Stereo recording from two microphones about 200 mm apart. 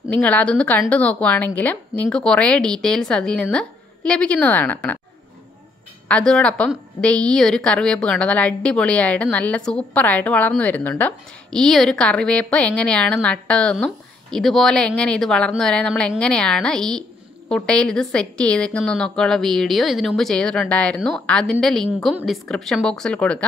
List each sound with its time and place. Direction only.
0.1 s a woman's voice: 5° left (ahead or behind)
6.0 s a woman's voice: 5° left (ahead or behind)